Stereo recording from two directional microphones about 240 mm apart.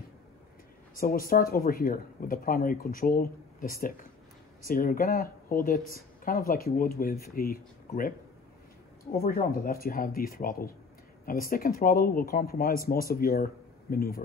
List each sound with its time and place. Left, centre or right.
0.9 s speech: left
9.1 s speech: left